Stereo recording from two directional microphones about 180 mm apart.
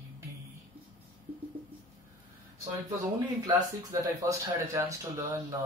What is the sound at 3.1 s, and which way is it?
Speech, 20° right (ahead or behind).